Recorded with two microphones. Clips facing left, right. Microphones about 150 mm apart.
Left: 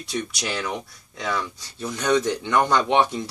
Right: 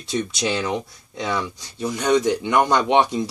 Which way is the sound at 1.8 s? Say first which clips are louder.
Right 3 dB; 10° right (ahead or behind).